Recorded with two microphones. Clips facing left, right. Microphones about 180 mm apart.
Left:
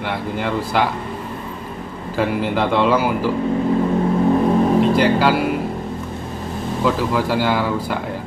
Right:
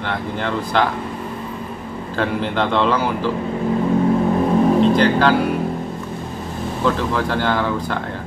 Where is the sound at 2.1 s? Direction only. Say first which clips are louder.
Left 2 dB; 5° left (ahead or behind).